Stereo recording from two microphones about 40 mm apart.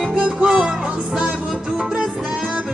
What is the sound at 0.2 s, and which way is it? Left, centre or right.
Music, right.